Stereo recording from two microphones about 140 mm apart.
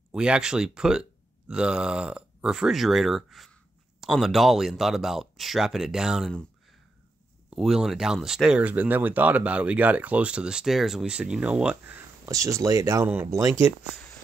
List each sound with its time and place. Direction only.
0.1 s speech: 5° right (ahead or behind)
7.4 s speech: centre (ahead or behind)
12.3 s speech: 20° right (ahead or behind)